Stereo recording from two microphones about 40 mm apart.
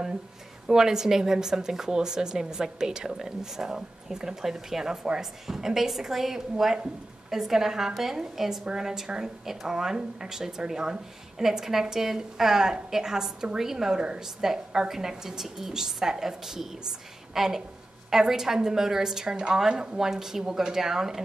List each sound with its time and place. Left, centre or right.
0.7 s a woman's voice: centre
20.0 s speech: centre